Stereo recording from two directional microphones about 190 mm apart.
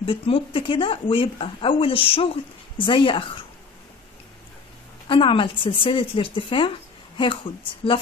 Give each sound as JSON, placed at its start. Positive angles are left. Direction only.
{"t": 0.0, "sound": "speech", "side_deg": 30}
{"t": 5.0, "sound": "speech", "side_deg": 25}